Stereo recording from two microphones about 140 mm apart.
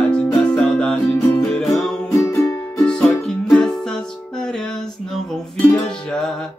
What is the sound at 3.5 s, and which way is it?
Music, 5° left (ahead or behind).